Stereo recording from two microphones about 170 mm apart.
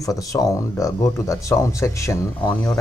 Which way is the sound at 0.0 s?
20° left (ahead or behind).